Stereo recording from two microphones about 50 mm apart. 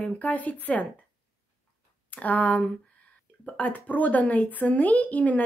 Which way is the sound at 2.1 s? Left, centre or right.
Left.